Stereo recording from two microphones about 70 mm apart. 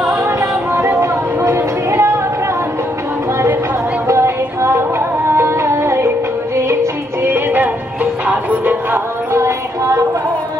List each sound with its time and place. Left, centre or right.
0.1 s chatter: right
4.1 s music: right
7.3 s music: right
9.3 s a sound: right